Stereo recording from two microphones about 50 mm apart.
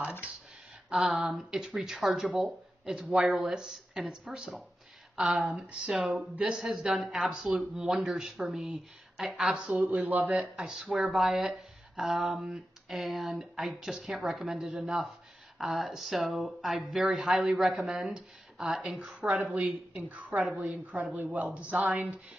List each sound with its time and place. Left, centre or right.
0.9 s speech: centre
6.0 s a woman's voice: right
6.4 s speech: centre
9.5 s a woman's voice: right
10.5 s a woman's voice: centre; by 22.2 s right